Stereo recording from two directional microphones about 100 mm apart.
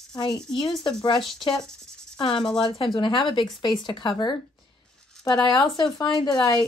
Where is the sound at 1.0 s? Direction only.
55° left (ahead or behind).